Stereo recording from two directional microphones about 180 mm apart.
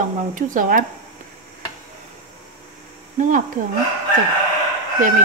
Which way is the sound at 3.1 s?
45° right (ahead or behind).